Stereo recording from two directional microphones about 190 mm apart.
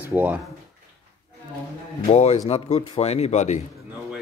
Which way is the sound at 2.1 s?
35° left (ahead or behind).